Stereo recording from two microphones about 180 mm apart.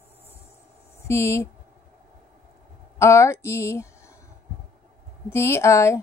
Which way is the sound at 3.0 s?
15° left (ahead or behind).